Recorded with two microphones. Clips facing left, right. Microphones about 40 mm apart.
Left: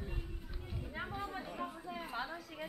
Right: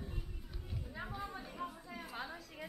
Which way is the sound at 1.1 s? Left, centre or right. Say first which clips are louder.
Left 3 dB; left.